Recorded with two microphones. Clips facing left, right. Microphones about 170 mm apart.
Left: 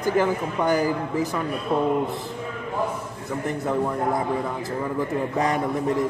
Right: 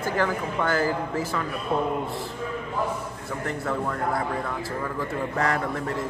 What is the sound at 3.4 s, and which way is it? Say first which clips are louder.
A man's voice: left 4 dB; 20° left (ahead or behind).